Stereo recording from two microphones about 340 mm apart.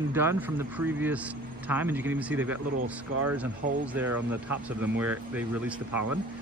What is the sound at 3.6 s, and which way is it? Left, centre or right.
Speech, right.